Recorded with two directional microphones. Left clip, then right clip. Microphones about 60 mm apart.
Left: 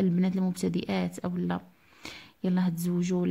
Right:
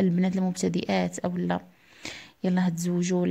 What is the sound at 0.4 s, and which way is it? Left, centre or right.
Speech, centre.